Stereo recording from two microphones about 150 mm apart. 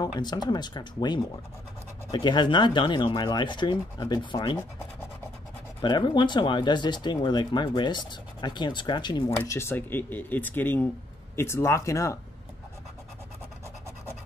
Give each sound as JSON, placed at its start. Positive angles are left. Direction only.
{"t": 0.2, "sound": "speech", "side_deg": 30}
{"t": 5.8, "sound": "speech", "side_deg": 30}
{"t": 9.4, "sound": "speech", "side_deg": 15}